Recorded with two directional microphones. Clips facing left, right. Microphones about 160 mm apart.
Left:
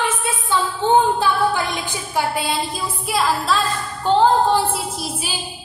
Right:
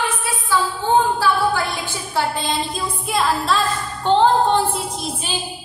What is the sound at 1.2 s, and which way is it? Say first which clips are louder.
A woman's voice: even; 15° left (ahead or behind).